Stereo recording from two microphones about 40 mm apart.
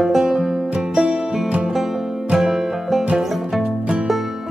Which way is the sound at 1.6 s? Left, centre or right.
Centre.